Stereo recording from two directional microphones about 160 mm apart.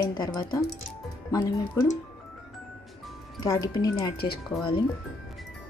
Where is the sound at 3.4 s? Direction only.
20° left (ahead or behind).